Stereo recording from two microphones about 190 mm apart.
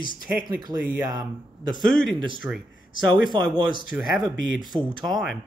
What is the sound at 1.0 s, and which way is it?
Speech, 20° right (ahead or behind).